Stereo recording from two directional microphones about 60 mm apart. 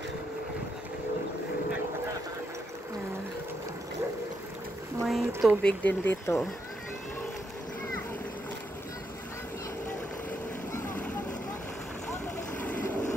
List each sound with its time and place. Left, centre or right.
5.0 s a sound: centre
5.6 s speech: left
6.0 s speech: left